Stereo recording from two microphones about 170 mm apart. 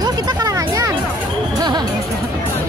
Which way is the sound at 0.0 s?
25° right (ahead or behind).